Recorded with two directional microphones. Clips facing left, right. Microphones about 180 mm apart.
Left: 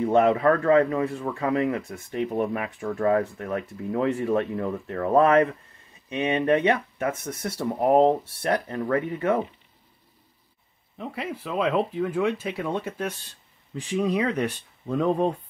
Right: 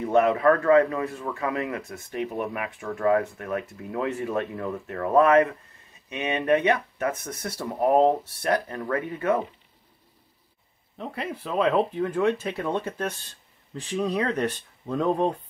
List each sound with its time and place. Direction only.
0.0 s speech: 30° left (ahead or behind)
11.0 s speech: 5° left (ahead or behind)